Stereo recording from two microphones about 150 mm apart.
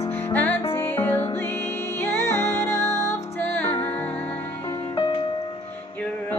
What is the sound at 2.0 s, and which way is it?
Music, 15° left (ahead or behind).